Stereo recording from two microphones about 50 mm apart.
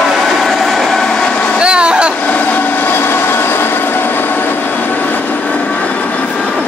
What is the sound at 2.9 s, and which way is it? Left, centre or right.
Train, left.